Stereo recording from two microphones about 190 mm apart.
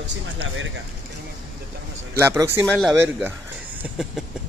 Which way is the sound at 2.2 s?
15° right (ahead or behind).